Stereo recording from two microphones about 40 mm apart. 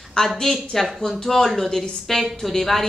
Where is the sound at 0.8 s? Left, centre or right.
Centre.